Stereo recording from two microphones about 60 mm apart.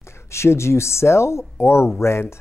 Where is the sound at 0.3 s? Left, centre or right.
Left.